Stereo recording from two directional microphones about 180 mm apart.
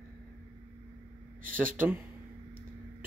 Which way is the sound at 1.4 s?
50° right (ahead or behind).